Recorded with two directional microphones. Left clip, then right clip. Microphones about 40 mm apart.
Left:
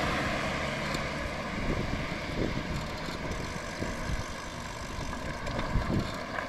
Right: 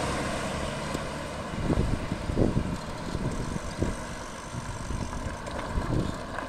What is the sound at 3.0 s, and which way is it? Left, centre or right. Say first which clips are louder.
Vehicle: right 1 dB; centre.